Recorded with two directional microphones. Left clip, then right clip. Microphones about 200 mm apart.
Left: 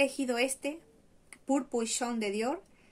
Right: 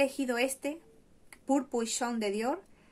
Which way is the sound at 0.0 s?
10° left (ahead or behind).